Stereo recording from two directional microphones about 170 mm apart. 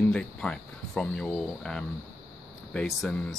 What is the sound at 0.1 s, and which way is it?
Speech, 5° left (ahead or behind).